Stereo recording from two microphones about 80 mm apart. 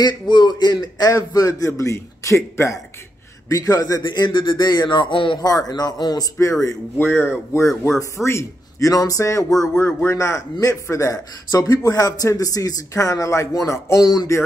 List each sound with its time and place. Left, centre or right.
0.0 s a man's voice: left
4.0 s a man's voice: left
5.4 s a man's voice: left
7.0 s a man's voice: left
10.5 s a man's voice: left